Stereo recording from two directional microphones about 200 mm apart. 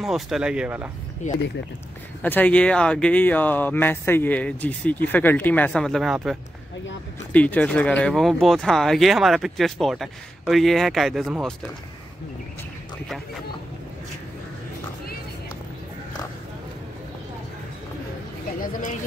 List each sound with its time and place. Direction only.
0.0 s speech: centre (ahead or behind)
1.2 s speech: 35° left (ahead or behind)
2.2 s speech: 10° left (ahead or behind)
7.3 s speech: 5° left (ahead or behind)
18.7 s speech: 40° left (ahead or behind)